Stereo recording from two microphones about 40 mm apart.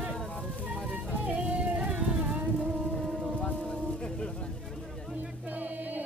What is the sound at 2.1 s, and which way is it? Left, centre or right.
Music, right.